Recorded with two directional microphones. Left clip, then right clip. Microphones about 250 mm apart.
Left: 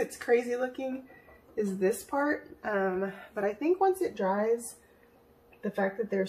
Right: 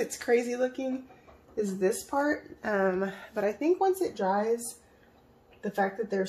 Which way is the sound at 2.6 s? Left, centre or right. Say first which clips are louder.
Right 3 dB; right.